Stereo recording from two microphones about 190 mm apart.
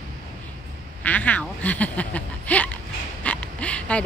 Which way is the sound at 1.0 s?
10° left (ahead or behind).